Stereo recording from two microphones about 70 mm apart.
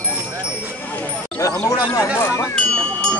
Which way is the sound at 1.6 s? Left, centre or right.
Left.